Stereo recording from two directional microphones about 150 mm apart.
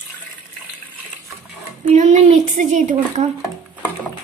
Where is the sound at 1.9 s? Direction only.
55° right (ahead or behind).